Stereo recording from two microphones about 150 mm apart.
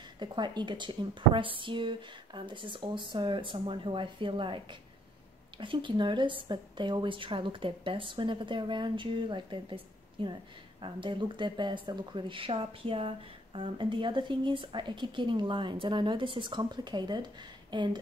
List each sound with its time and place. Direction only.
0.2 s speech: 30° right (ahead or behind)